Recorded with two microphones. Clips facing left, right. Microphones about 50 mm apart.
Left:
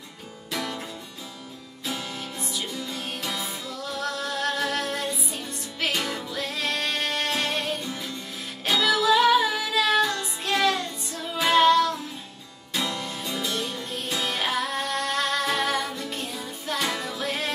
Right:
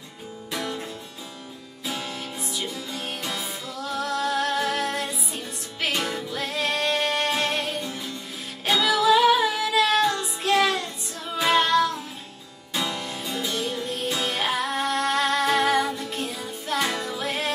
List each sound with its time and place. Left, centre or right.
0.5 s music: centre
2.9 s music: centre
12.9 s music: centre
13.8 s music: centre